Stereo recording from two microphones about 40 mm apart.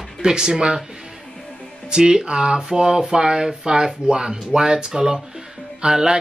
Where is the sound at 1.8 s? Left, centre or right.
Centre.